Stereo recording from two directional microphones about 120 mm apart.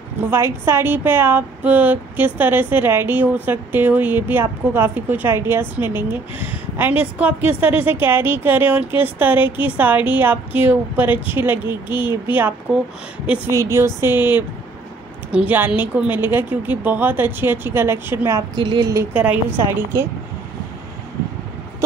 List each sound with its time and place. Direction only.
0.3 s a woman's voice: 20° right (ahead or behind)
18.6 s a woman's voice: 40° right (ahead or behind)
19.1 s a woman's voice: 10° right (ahead or behind)